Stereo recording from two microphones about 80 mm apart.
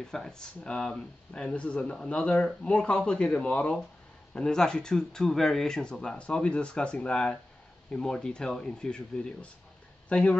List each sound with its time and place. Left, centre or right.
0.1 s speech: centre